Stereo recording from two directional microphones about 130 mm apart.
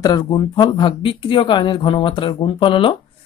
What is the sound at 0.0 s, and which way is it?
Speech, 30° left (ahead or behind).